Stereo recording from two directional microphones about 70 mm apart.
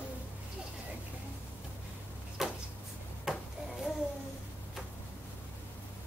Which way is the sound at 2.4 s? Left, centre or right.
Centre.